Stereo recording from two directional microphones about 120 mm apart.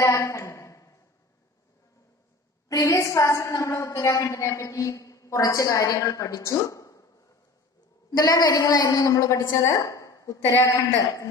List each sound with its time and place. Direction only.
0.0 s speech: 25° left (ahead or behind)
2.7 s a woman's voice: 25° left (ahead or behind)
8.2 s a woman's voice: 30° left (ahead or behind)